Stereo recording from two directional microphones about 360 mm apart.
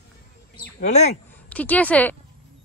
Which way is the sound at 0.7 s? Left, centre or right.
Centre.